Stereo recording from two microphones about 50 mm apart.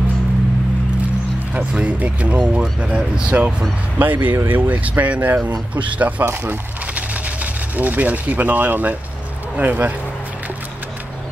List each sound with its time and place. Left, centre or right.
1.5 s speech: right
4.0 s speech: right
7.7 s speech: right